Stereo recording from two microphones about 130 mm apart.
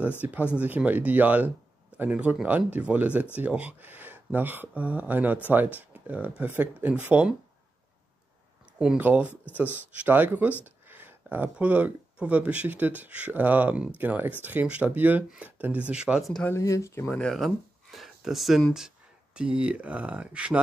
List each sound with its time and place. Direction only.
0.2 s speech: 10° right (ahead or behind)
8.7 s speech: 10° right (ahead or behind)
16.4 s speech: 25° left (ahead or behind)
17.1 s speech: 5° left (ahead or behind)